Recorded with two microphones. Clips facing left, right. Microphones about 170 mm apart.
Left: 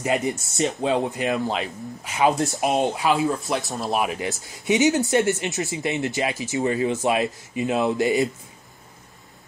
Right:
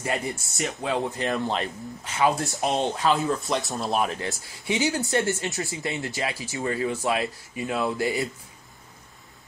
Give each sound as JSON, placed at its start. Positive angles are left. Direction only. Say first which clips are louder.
{"t": 0.0, "sound": "speech", "louder": "left 5 dB", "side_deg": 20}
{"t": 1.3, "sound": "speech", "louder": "left 2 dB", "side_deg": 5}